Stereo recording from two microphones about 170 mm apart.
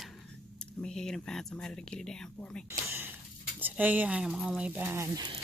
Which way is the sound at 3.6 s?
10° right (ahead or behind).